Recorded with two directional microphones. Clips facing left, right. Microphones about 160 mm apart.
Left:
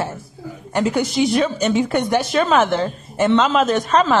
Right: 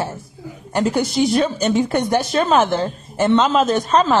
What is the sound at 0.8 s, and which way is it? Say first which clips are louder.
Speech: right 1 dB; 35° right (ahead or behind).